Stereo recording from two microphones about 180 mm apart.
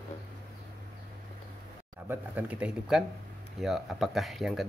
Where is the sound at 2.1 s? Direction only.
10° right (ahead or behind).